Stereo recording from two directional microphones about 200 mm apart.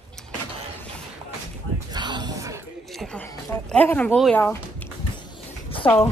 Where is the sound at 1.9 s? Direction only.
20° right (ahead or behind).